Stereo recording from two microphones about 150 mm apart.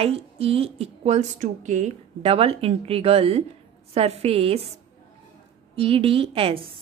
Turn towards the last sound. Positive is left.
turn(degrees=-40)  # may be behind; listen again after turning